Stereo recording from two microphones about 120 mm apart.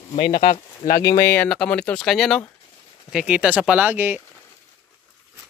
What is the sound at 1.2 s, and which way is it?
Speech, 10° left (ahead or behind).